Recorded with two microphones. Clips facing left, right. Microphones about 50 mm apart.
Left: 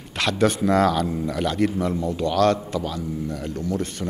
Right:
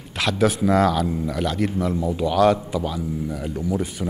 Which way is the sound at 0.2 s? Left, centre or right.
Centre.